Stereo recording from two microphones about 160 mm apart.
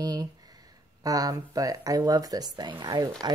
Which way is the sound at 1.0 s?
25° right (ahead or behind).